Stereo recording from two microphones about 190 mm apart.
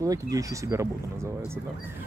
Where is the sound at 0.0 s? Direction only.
20° right (ahead or behind).